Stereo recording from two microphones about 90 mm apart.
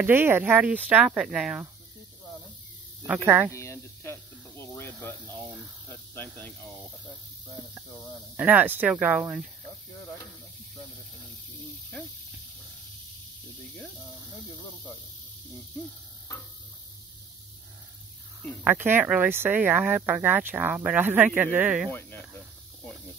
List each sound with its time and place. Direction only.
0.0 s speech: 25° right (ahead or behind); by 1.7 s 5° right (ahead or behind)
3.2 s speech: 20° right (ahead or behind)
3.5 s snake: 30° left (ahead or behind)
5.9 s speech: 20° left (ahead or behind)
8.4 s speech: 15° right (ahead or behind)
18.6 s speech: 20° right (ahead or behind)